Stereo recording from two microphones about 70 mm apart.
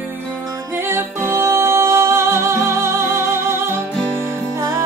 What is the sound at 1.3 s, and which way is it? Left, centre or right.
Music, right.